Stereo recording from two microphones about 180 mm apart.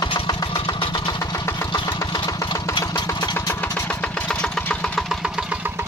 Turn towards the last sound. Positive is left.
turn(degrees=-10)  # may be behind; listen again after turning